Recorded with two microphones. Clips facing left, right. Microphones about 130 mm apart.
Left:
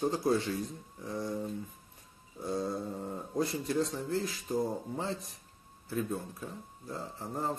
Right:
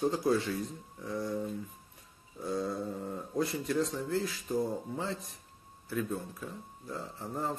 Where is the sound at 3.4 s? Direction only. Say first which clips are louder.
Even; 35° left (ahead or behind).